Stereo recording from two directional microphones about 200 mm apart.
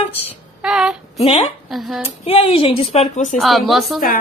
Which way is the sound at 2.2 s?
30° left (ahead or behind).